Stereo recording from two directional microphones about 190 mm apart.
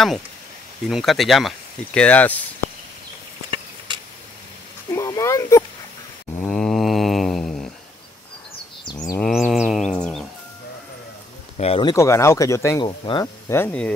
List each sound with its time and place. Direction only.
0.8 s speech: centre (ahead or behind)
3.5 s a sound: 25° right (ahead or behind)
4.9 s speech: 15° left (ahead or behind)
6.4 s mantra: 5° left (ahead or behind)
9.2 s a sound: centre (ahead or behind)
11.5 s speech: 30° left (ahead or behind)
11.9 s speech: 15° left (ahead or behind)